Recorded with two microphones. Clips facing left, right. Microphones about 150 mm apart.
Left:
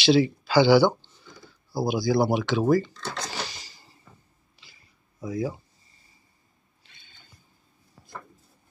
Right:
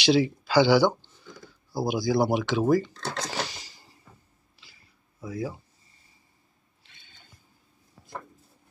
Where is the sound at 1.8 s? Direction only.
15° right (ahead or behind).